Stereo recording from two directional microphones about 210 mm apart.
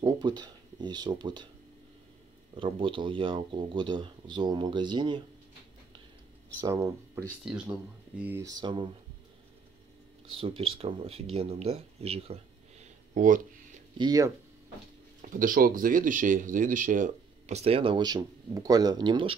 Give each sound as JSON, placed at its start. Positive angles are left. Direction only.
{"t": 0.0, "sound": "speech", "side_deg": -20}
{"t": 2.5, "sound": "speech", "side_deg": -25}
{"t": 6.6, "sound": "speech", "side_deg": -15}
{"t": 10.3, "sound": "speech", "side_deg": -25}
{"t": 13.9, "sound": "speech", "side_deg": -20}
{"t": 15.2, "sound": "speech", "side_deg": -40}